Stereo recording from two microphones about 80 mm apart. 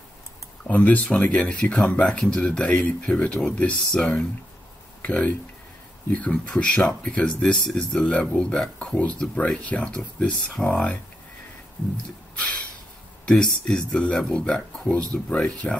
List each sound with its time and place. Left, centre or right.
0.7 s speech: centre
12.4 s a sound: centre
13.2 s speech: centre